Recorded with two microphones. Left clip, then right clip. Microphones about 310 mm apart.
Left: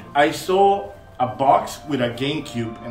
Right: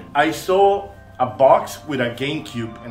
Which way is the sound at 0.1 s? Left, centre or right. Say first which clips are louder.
Even; centre.